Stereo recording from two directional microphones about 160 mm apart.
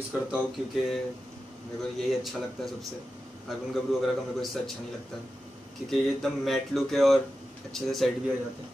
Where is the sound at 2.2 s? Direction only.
Centre (ahead or behind).